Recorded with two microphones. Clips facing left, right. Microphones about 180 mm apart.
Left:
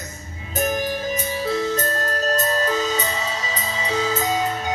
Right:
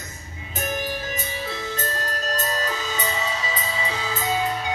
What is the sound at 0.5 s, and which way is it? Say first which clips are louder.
Music: left 5 dB; 40° left (ahead or behind).